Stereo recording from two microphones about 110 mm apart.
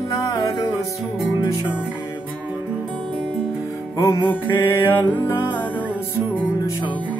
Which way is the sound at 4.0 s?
25° left (ahead or behind).